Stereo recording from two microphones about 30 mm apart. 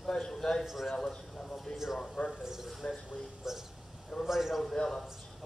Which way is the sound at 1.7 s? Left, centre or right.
Centre.